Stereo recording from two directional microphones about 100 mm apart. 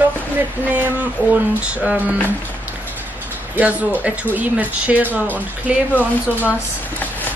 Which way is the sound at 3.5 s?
15° right (ahead or behind).